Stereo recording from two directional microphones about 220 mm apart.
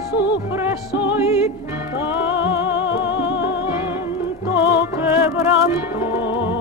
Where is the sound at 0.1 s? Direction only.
50° left (ahead or behind).